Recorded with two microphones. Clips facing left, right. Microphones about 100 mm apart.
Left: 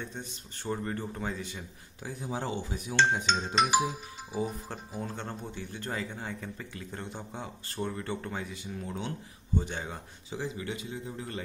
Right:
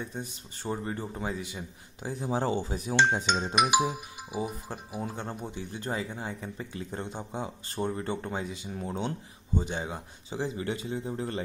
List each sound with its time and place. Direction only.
0.0 s a man's voice: 10° right (ahead or behind)
2.0 s a man's voice: 35° right (ahead or behind)
3.3 s speech: 15° right (ahead or behind)
9.6 s a man's voice: 15° right (ahead or behind)
10.3 s a man's voice: 35° right (ahead or behind)